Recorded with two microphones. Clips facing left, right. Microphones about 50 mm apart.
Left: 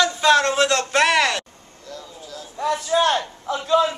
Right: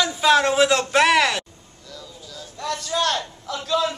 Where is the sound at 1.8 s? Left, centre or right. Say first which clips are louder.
Left 3 dB; left.